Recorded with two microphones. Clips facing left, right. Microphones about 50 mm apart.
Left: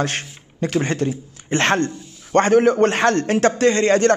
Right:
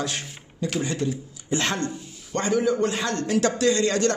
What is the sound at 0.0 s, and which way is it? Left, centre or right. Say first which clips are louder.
A man's voice: left 6 dB; left.